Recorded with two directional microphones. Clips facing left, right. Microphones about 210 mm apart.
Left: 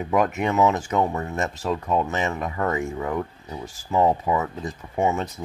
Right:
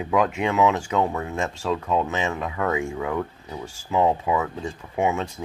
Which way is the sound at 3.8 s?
Centre (ahead or behind).